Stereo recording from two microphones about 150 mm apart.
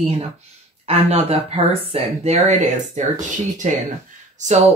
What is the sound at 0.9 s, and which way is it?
Speech, 40° right (ahead or behind).